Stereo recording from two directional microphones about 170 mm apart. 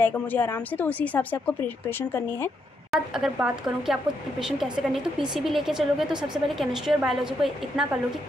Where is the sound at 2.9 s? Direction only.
5° right (ahead or behind).